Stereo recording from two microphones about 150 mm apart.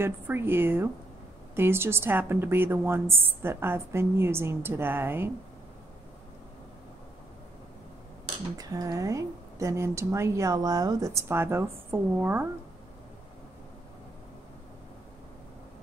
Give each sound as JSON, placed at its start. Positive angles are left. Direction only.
{"t": 0.0, "sound": "a woman's voice", "side_deg": -15}
{"t": 8.5, "sound": "a woman's voice", "side_deg": -25}